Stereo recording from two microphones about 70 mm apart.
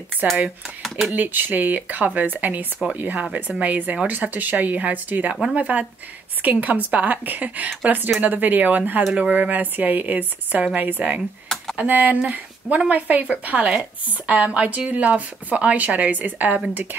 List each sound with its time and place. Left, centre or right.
0.2 s speech: right
0.8 s speech: centre
1.1 s speech: right
11.4 s computer keyboard: centre
11.7 s speech: right